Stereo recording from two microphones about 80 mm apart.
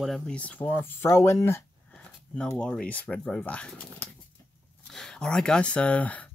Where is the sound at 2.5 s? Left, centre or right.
Centre.